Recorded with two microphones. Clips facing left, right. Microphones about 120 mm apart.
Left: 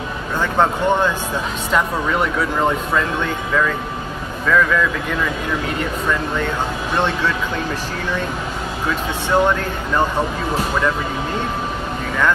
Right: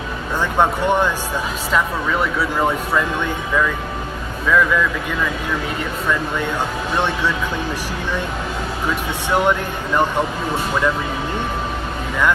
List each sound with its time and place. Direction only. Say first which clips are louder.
0.4 s speech: even; 15° right (ahead or behind)
1.7 s speech: left 1 dB; centre (ahead or behind)
4.5 s speech: even; 5° right (ahead or behind)
7.0 s speech: left 1 dB; 15° right (ahead or behind)
9.3 s speech: left 1 dB; 15° right (ahead or behind)